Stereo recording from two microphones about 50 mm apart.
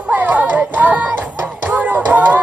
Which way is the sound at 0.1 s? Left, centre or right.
Right.